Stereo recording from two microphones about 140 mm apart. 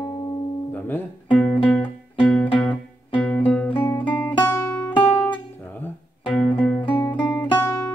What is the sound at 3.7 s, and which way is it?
Music, 35° left (ahead or behind).